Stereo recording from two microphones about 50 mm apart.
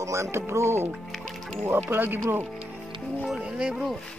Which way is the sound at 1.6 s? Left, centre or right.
Right.